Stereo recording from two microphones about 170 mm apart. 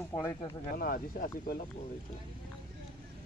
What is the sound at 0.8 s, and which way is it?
Speech, 60° left (ahead or behind).